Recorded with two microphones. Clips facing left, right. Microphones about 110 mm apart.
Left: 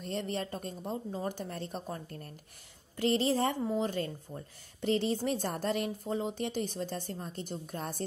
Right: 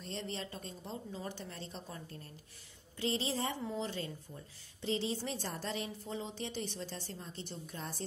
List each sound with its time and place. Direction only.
0.0 s speech: 50° left (ahead or behind)